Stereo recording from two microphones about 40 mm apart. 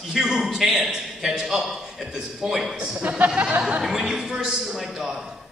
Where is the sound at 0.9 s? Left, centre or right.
Centre.